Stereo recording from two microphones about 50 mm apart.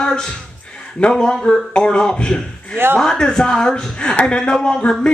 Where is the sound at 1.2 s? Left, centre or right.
Centre.